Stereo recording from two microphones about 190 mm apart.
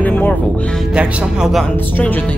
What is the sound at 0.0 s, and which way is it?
Music, 10° left (ahead or behind).